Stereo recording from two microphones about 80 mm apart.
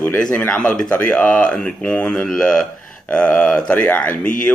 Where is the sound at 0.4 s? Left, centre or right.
Centre.